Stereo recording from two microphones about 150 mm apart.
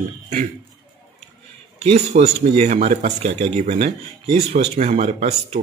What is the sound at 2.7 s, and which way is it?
Speech, 55° right (ahead or behind).